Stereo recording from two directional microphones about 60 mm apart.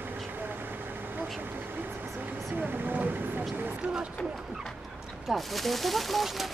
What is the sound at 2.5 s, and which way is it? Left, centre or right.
Vehicle, right.